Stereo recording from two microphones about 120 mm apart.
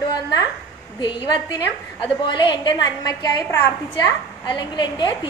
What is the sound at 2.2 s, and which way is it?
A woman's voice, 40° left (ahead or behind).